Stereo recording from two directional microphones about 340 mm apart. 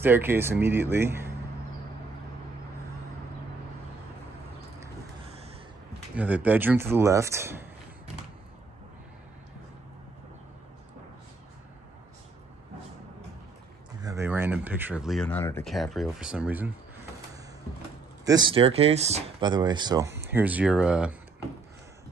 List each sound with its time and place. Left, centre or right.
0.0 s speech: centre
6.1 s speech: centre
14.0 s speech: centre
18.2 s speech: centre